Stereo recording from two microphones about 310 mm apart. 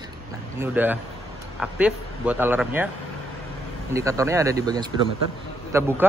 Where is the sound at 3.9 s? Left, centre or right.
Centre.